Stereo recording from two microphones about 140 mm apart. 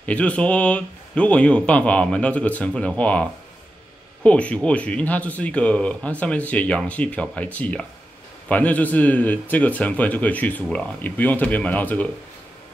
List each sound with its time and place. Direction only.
0.0 s speech: 10° left (ahead or behind)